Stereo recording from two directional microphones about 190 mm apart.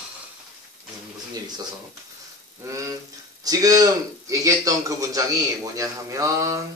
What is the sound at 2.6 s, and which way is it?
A man's voice, 15° right (ahead or behind).